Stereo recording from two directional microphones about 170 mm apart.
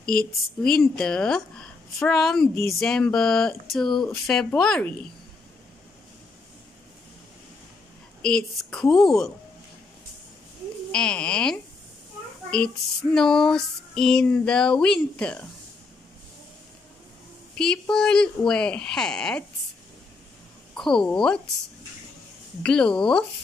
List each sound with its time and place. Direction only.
0.0 s a woman's voice: 60° left (ahead or behind)
0.6 s speech: 5° left (ahead or behind)
8.2 s speech: 5° left (ahead or behind)
10.9 s speech: 5° left (ahead or behind)
17.6 s speech: 5° left (ahead or behind)
20.7 s speech: 5° left (ahead or behind)
22.6 s speech: 5° left (ahead or behind)